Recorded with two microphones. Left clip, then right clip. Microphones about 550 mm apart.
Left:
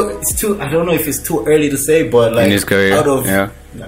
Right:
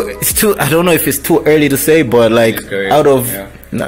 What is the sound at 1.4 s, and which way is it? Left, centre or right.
A man's voice, right.